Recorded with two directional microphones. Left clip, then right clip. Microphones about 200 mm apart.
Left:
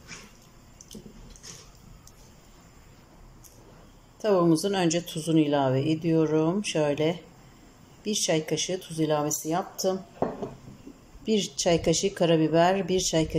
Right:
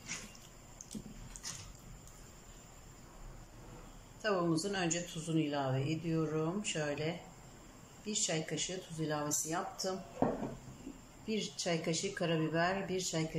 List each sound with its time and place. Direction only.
4.2 s speech: 35° left (ahead or behind)
11.2 s speech: 35° left (ahead or behind)